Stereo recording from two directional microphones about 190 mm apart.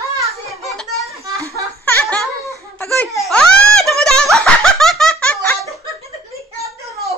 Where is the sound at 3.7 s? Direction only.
Centre (ahead or behind).